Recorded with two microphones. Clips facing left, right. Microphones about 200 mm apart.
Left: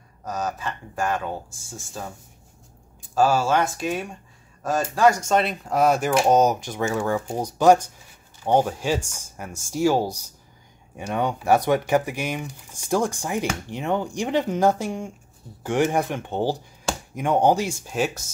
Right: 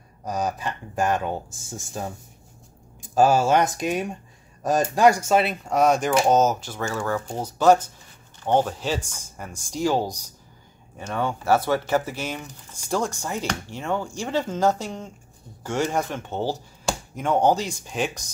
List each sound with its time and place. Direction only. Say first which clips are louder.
0.2 s speech: right 2 dB; 15° right (ahead or behind)
3.2 s speech: right 2 dB; 20° right (ahead or behind)
5.3 s speech: right 1 dB; 5° right (ahead or behind)
10.0 s speech: left 2 dB; 15° right (ahead or behind)
11.0 s speech: left 2 dB; 15° left (ahead or behind)